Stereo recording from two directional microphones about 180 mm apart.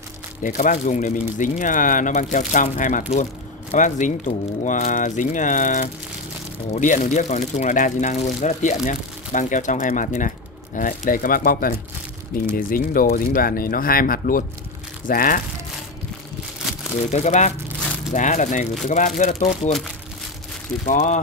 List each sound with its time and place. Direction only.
0.4 s speech: 45° left (ahead or behind)
17.1 s speech: 40° left (ahead or behind)
20.8 s speech: 45° left (ahead or behind)